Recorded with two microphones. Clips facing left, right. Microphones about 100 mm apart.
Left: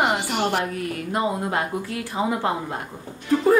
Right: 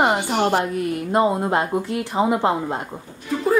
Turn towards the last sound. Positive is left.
turn(degrees=0)  # may be behind; listen again after turning